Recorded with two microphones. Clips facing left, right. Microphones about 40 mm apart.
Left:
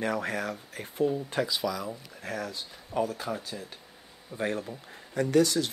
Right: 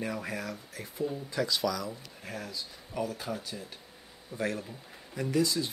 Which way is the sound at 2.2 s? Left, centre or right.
Left.